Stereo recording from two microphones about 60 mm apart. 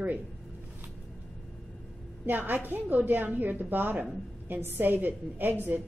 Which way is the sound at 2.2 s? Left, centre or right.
Right.